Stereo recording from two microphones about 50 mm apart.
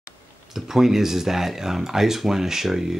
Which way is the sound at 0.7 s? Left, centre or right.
Centre.